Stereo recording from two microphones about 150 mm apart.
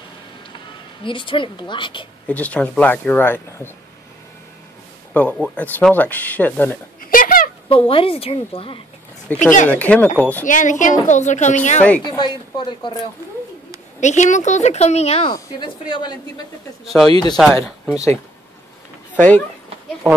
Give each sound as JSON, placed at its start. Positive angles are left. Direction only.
{"t": 1.0, "sound": "a woman's voice", "side_deg": 35}
{"t": 2.2, "sound": "speech", "side_deg": 10}
{"t": 5.1, "sound": "speech", "side_deg": 10}
{"t": 7.0, "sound": "a sound", "side_deg": 65}
{"t": 7.6, "sound": "a woman's voice", "side_deg": 35}
{"t": 9.3, "sound": "speech", "side_deg": 10}
{"t": 10.4, "sound": "a woman's voice", "side_deg": 60}
{"t": 12.5, "sound": "a woman's voice", "side_deg": 30}
{"t": 13.9, "sound": "a woman's voice", "side_deg": 50}
{"t": 15.3, "sound": "a woman's voice", "side_deg": 30}
{"t": 16.8, "sound": "speech", "side_deg": 0}
{"t": 17.1, "sound": "speech", "side_deg": 30}
{"t": 19.1, "sound": "speech", "side_deg": 10}